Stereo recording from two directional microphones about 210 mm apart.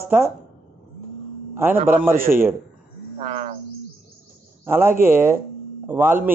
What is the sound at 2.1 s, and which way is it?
Speech, 45° right (ahead or behind).